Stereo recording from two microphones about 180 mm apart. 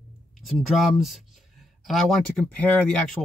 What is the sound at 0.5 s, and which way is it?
Speech, centre (ahead or behind).